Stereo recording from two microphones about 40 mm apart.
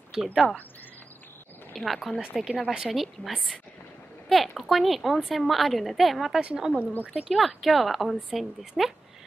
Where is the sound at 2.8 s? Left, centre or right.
Centre.